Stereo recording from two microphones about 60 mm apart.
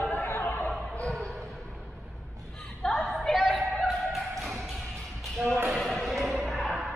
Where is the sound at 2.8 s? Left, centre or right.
Centre.